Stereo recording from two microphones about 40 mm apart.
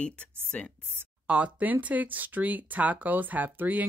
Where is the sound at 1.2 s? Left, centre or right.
Right.